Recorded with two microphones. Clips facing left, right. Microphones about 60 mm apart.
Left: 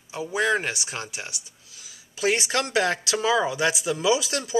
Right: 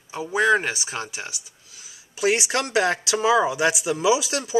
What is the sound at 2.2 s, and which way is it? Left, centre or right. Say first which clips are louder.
Speech: right 2 dB; centre.